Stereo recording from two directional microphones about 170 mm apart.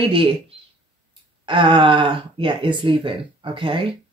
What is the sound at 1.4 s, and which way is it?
Speech, 30° right (ahead or behind).